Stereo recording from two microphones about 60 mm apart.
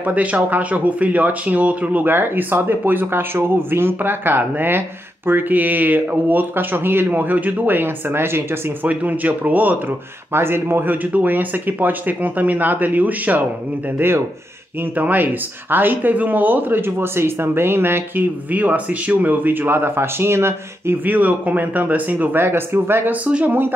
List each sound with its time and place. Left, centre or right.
0.0 s speech: right
8.8 s speech: right
13.9 s speech: right
18.5 s speech: right
21.0 s speech: right
23.2 s speech: right